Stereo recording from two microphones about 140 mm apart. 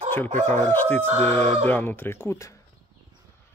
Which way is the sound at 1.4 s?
50° right (ahead or behind).